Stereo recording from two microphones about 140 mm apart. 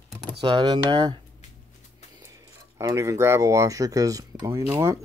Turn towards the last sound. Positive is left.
turn(degrees=-20)  # may be behind; listen again after turning